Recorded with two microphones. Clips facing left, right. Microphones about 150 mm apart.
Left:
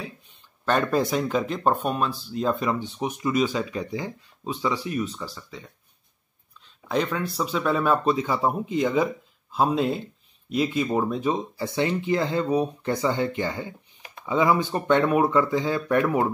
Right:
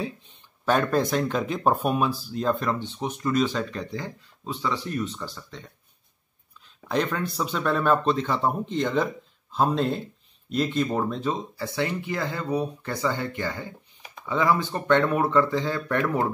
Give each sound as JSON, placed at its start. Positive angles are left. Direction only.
{"t": 0.7, "sound": "speech", "side_deg": 0}
{"t": 6.9, "sound": "speech", "side_deg": 0}